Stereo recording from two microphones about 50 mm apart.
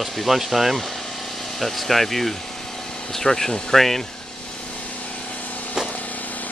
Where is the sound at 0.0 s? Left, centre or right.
Centre.